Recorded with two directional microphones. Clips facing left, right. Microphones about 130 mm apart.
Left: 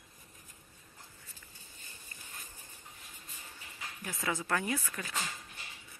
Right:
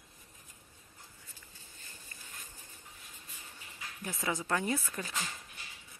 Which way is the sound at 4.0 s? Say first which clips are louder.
Right 1 dB; 20° right (ahead or behind).